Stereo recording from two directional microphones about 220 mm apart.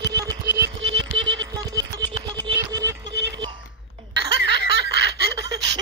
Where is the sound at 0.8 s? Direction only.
60° right (ahead or behind).